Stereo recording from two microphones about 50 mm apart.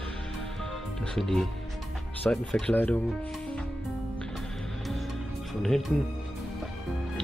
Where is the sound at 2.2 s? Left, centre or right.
Centre.